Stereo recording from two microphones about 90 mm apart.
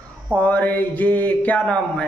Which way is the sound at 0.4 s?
15° left (ahead or behind).